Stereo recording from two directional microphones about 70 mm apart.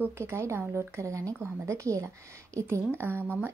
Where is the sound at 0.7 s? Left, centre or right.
Right.